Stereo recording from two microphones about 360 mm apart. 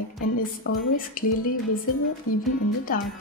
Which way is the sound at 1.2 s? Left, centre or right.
Left.